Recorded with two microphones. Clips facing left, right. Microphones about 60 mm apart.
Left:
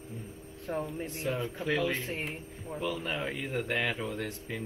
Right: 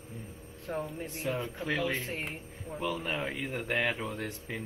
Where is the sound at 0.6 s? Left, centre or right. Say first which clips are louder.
Left 1 dB; centre.